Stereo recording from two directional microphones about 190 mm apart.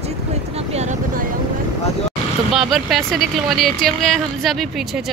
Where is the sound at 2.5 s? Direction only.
Centre (ahead or behind).